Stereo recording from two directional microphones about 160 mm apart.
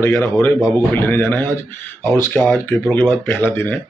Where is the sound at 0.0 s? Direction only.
15° left (ahead or behind).